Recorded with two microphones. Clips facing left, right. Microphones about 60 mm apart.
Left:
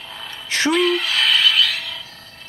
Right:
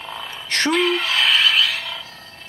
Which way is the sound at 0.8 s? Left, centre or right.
Right.